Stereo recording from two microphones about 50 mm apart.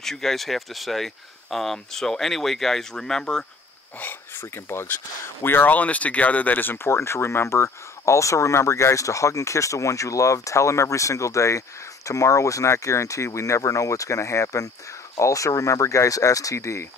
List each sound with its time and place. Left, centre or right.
0.0 s speech: centre
4.4 s speech: left
5.7 s speech: left
6.9 s speech: left